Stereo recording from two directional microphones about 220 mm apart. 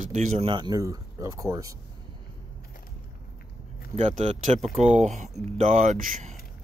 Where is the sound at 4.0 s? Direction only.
30° right (ahead or behind).